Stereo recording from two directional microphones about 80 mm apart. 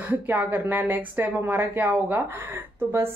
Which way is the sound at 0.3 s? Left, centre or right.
Right.